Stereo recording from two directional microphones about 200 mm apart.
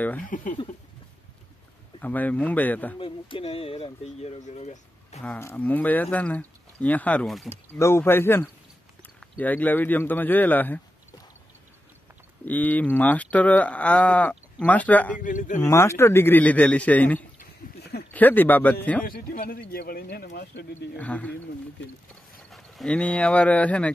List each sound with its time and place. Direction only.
0.2 s speech: 40° left (ahead or behind)
2.0 s speech: 10° left (ahead or behind)
3.0 s speech: 25° left (ahead or behind)
5.2 s speech: 10° left (ahead or behind)
12.4 s speech: 10° left (ahead or behind)
15.1 s speech: 40° left (ahead or behind)
15.6 s speech: 15° left (ahead or behind)
17.4 s a sound: 55° left (ahead or behind)
18.1 s speech: 10° left (ahead or behind)
19.0 s speech: 50° left (ahead or behind)
21.0 s speech: 5° left (ahead or behind)
22.5 s speech: centre (ahead or behind)